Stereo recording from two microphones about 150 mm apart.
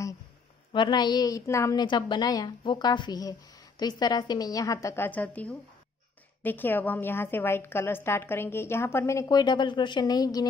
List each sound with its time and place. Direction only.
0.7 s a woman's voice: 30° left (ahead or behind)